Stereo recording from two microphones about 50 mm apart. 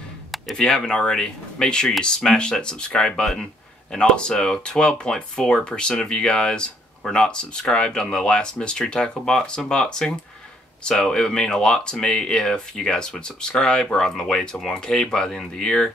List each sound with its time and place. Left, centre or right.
0.6 s speech: centre